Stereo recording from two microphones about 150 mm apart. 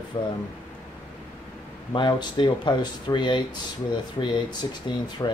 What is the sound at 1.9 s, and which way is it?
Speech, 30° left (ahead or behind).